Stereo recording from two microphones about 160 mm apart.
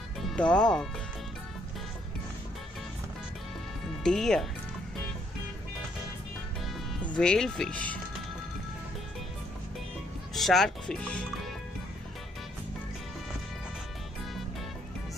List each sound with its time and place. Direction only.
0.2 s speech: 5° left (ahead or behind)
4.0 s speech: 5° left (ahead or behind)
7.2 s speech: 5° left (ahead or behind)
10.3 s speech: centre (ahead or behind)